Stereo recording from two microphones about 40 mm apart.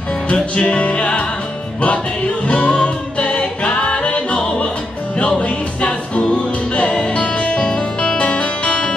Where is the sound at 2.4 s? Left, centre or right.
Left.